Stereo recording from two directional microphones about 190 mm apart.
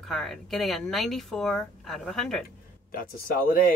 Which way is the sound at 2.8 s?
50° left (ahead or behind).